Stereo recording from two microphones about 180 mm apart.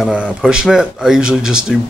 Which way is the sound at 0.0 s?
5° right (ahead or behind).